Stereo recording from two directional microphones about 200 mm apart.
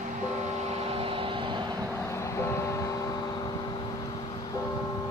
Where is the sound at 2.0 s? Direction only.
15° left (ahead or behind).